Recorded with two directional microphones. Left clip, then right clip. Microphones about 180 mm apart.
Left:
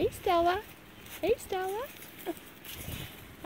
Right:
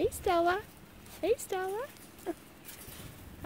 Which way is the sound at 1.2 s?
5° right (ahead or behind).